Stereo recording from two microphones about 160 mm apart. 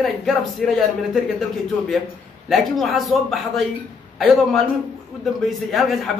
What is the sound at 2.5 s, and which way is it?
A man's voice, centre (ahead or behind).